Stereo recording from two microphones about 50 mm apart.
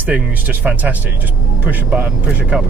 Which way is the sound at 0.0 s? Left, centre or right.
Right.